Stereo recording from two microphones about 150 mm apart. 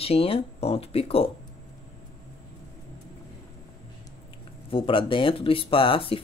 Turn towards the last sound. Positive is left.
turn(degrees=35)  # may be behind; listen again after turning